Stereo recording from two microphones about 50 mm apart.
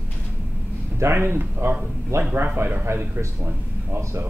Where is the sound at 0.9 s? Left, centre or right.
Right.